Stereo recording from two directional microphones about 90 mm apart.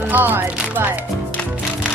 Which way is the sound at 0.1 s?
20° right (ahead or behind).